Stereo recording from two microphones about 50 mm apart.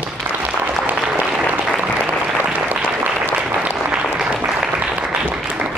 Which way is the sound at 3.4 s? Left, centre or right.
Centre.